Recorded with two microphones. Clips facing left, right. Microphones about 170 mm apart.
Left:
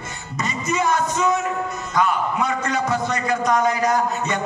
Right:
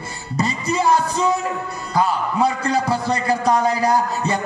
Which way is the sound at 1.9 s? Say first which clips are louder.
Right 2 dB; 35° right (ahead or behind).